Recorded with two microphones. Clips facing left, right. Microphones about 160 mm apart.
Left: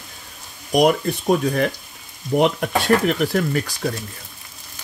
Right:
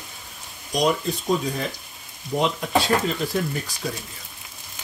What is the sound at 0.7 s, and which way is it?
Speech, 60° left (ahead or behind).